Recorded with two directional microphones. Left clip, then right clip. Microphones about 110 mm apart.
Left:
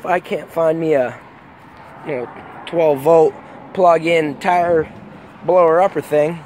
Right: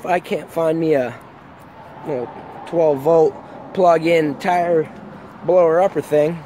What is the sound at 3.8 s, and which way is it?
Speech, 40° right (ahead or behind).